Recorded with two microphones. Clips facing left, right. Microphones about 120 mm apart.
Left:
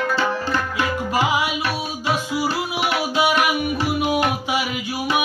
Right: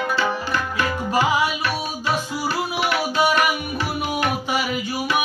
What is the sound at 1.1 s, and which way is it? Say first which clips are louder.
Music: right 2 dB; 5° left (ahead or behind).